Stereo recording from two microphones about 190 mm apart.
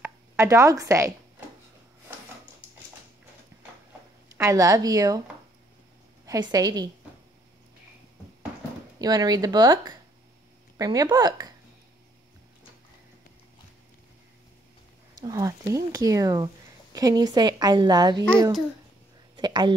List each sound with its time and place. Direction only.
0.0 s speech: 15° right (ahead or behind)
4.3 s a woman's voice: 15° right (ahead or behind)
6.2 s a woman's voice: 20° right (ahead or behind)
9.0 s a woman's voice: 20° right (ahead or behind)
15.1 s a woman's voice: 20° right (ahead or behind)
19.3 s a sound: 25° right (ahead or behind)